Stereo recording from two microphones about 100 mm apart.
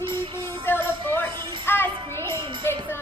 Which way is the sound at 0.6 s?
20° left (ahead or behind).